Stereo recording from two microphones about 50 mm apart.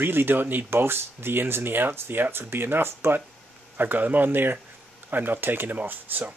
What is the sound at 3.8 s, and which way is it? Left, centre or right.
Speech, right.